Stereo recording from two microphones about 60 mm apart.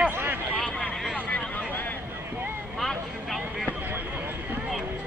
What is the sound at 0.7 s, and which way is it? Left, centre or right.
Vehicle, centre.